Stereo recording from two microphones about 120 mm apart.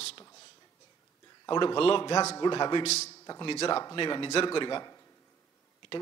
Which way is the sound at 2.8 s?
60° left (ahead or behind).